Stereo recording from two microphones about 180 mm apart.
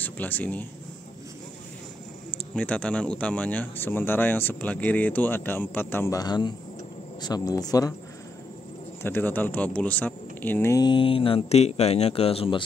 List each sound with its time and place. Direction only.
0.0 s speech: 10° left (ahead or behind)
2.5 s speech: 5° left (ahead or behind)
9.0 s speech: 10° left (ahead or behind); by 12.6 s 30° left (ahead or behind)